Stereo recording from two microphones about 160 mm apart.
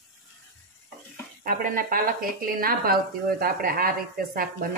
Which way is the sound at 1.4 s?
65° right (ahead or behind).